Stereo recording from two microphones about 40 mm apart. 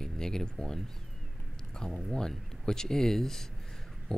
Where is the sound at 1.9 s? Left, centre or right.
Centre.